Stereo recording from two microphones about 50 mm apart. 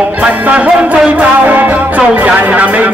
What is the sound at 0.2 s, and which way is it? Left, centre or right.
Music, right.